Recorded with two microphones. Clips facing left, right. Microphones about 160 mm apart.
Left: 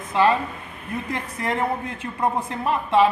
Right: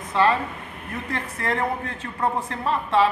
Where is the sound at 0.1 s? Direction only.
15° left (ahead or behind).